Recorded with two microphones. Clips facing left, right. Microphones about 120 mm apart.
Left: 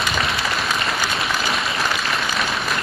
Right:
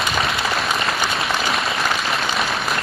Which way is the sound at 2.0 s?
Centre (ahead or behind).